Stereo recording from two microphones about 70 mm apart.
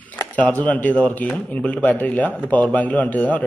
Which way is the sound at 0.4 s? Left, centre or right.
Left.